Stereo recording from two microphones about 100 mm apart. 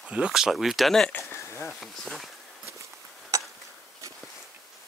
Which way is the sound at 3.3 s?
35° right (ahead or behind).